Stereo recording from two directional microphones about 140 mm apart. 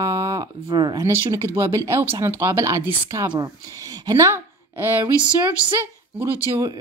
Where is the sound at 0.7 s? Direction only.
30° right (ahead or behind).